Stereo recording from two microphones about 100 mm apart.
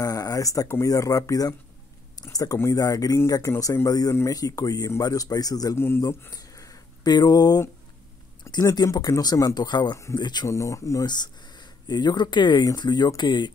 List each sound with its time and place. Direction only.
0.0 s speech: 35° left (ahead or behind)
5.8 s speech: 25° left (ahead or behind); by 7.6 s 40° left (ahead or behind)
8.6 s speech: 40° left (ahead or behind)
10.5 s speech: 30° left (ahead or behind)
11.1 s speech: 45° left (ahead or behind)